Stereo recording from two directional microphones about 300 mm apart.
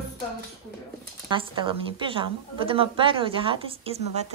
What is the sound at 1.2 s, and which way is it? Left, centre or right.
A woman's voice, centre.